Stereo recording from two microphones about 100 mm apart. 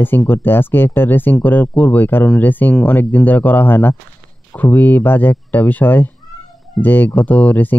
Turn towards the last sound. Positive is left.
turn(degrees=15)  # may be behind; listen again after turning